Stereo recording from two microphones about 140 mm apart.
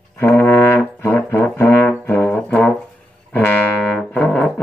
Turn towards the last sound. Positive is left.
turn(degrees=10)  # may be behind; listen again after turning